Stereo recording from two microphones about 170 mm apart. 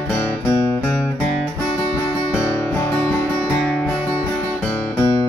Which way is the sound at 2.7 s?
15° left (ahead or behind).